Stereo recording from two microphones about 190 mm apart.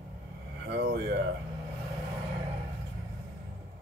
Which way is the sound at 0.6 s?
60° right (ahead or behind).